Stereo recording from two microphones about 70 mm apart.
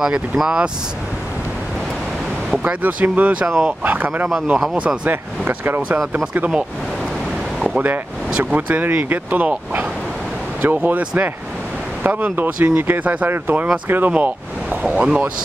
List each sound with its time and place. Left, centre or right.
0.4 s speech: centre
2.5 s speech: right
7.6 s speech: right